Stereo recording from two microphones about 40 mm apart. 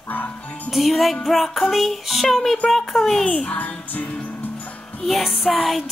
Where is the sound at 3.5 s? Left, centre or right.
Left.